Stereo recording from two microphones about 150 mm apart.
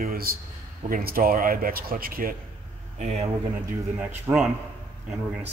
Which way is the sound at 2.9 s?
45° right (ahead or behind).